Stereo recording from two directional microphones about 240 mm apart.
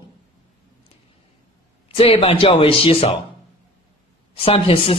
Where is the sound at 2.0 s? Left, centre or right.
Left.